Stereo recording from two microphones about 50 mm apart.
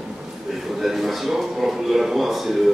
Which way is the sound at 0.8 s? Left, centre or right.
Centre.